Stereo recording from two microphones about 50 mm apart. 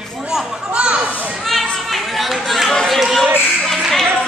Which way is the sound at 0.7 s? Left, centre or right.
Right.